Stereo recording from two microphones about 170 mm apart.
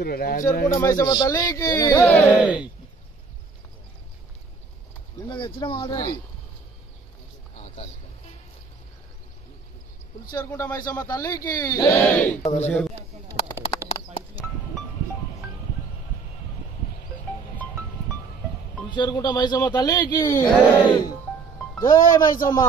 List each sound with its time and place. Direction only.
0.0 s speech: 60° left (ahead or behind)
0.7 s a man's voice: 20° left (ahead or behind)
2.3 s speech: 10° right (ahead or behind)
5.1 s a man's voice: 25° left (ahead or behind)
7.5 s a sound: 40° left (ahead or behind)
10.3 s speech: 15° left (ahead or behind)
12.4 s a man's voice: 40° left (ahead or behind)
12.7 s a sound: 10° left (ahead or behind)
13.8 s bird: 15° right (ahead or behind)
18.9 s a man's voice: 25° left (ahead or behind)
20.5 s speech: 10° left (ahead or behind)
21.7 s a man's voice: 20° left (ahead or behind)